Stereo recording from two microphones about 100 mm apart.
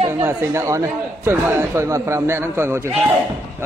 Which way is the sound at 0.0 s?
25° right (ahead or behind).